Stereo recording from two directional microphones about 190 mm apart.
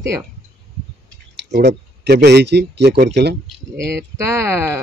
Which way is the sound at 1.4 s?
65° right (ahead or behind).